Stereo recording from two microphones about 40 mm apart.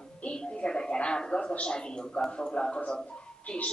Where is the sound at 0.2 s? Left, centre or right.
Left.